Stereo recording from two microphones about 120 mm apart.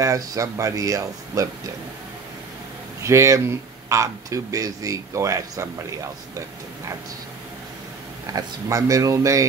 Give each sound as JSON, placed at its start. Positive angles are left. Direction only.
{"t": 0.0, "sound": "speech", "side_deg": -25}
{"t": 3.0, "sound": "speech", "side_deg": -25}
{"t": 8.3, "sound": "speech", "side_deg": -30}